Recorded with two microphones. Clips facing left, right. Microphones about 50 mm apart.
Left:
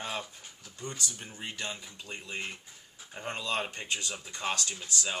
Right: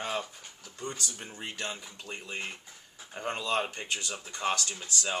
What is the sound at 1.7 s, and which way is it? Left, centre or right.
Speech, centre.